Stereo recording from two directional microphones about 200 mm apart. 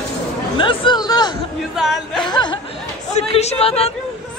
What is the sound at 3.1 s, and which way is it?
Speech, 30° left (ahead or behind).